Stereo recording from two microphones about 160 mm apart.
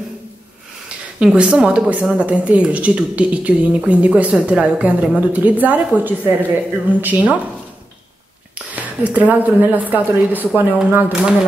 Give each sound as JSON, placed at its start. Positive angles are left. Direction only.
{"t": 0.8, "sound": "speech", "side_deg": -5}
{"t": 8.7, "sound": "speech", "side_deg": -10}